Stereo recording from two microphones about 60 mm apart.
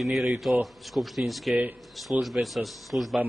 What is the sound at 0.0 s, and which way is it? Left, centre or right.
A man's voice, centre.